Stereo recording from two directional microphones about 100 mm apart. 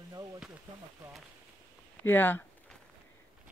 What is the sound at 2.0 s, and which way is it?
Speech, 20° left (ahead or behind).